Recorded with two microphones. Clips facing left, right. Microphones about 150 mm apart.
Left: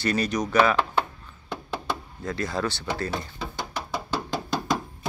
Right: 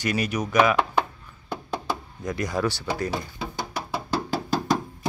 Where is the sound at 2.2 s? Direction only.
15° right (ahead or behind).